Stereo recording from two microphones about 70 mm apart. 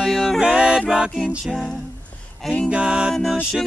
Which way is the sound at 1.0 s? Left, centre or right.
Centre.